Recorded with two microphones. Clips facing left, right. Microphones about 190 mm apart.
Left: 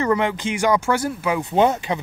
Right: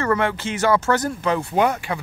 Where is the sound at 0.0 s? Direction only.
15° left (ahead or behind).